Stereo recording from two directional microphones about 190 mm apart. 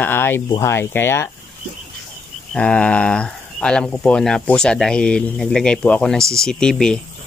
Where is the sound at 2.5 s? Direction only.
5° left (ahead or behind).